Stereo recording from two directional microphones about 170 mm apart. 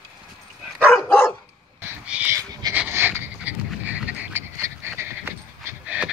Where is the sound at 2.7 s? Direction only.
10° right (ahead or behind).